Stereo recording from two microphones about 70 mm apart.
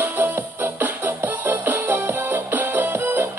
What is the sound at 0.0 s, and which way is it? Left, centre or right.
Music, right.